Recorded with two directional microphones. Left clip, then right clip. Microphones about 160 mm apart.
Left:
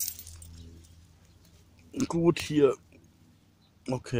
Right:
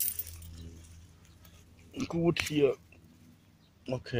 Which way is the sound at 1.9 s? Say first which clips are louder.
Left 5 dB; 45° left (ahead or behind).